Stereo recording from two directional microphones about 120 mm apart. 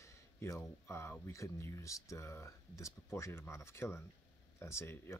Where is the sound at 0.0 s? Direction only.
20° left (ahead or behind).